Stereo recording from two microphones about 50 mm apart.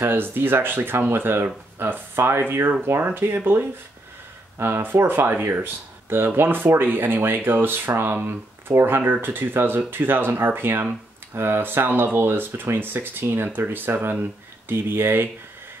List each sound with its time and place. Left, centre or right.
0.0 s speech: right